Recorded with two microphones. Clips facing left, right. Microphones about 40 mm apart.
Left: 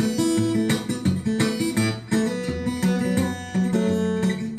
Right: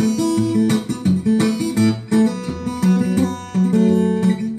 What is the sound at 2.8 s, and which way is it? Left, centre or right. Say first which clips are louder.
Music: right 7 dB; left.